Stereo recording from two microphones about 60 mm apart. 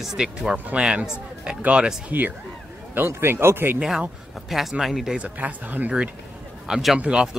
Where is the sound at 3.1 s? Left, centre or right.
Right.